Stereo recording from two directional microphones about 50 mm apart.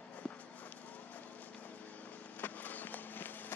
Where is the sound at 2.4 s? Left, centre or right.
Left.